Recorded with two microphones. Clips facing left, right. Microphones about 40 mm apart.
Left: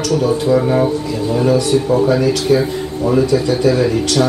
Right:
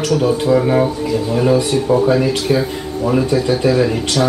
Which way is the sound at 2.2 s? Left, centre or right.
Centre.